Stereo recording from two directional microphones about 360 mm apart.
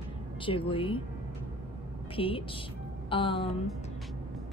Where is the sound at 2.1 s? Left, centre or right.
Centre.